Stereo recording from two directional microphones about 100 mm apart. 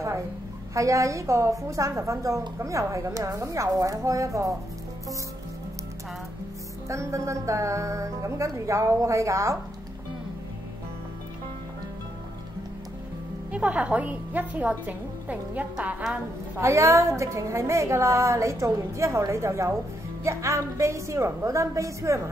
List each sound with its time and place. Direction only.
0.7 s speech: 30° right (ahead or behind)
6.9 s speech: 30° right (ahead or behind)
13.5 s a woman's voice: 10° right (ahead or behind)
16.6 s a woman's voice: 30° right (ahead or behind)